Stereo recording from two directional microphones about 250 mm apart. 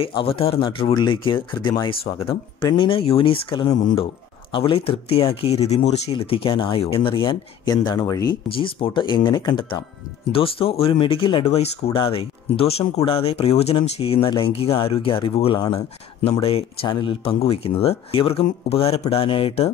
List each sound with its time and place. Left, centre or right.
0.0 s speech: left